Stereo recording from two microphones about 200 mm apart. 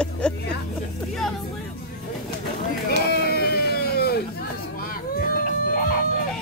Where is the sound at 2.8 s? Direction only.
50° left (ahead or behind).